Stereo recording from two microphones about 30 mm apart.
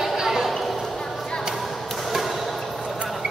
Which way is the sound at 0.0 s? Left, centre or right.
Centre.